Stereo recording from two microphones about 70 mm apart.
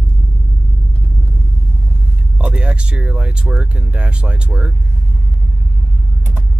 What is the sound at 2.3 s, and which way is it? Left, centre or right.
Speech, centre.